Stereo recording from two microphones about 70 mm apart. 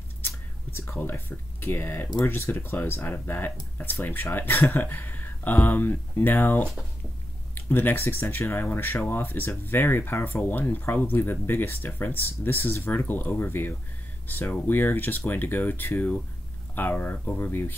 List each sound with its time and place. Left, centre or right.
0.7 s speech: left